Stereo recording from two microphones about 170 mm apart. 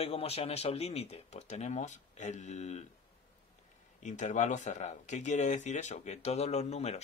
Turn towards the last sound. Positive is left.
turn(degrees=40)  # may be behind; listen again after turning